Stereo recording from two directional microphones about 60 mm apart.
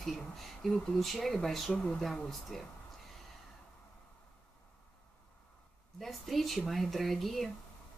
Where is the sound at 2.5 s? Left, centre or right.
Centre.